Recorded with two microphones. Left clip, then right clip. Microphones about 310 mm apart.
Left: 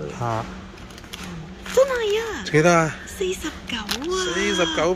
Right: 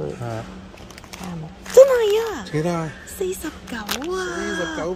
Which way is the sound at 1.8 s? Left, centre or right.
Right.